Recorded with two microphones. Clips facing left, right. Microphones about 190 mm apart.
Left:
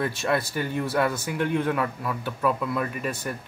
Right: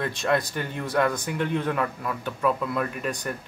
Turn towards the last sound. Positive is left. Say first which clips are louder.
# even
turn(degrees=5)  # may be behind; listen again after turning